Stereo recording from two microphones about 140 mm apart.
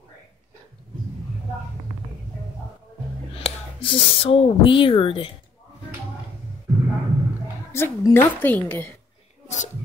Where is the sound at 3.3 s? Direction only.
45° left (ahead or behind).